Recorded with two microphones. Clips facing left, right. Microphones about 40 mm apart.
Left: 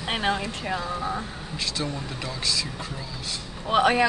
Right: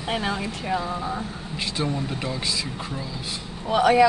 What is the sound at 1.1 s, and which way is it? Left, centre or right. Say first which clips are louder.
Speech: right 1 dB; right.